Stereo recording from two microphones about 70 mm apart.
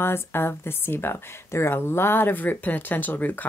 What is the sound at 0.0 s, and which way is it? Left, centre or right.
Speech, left.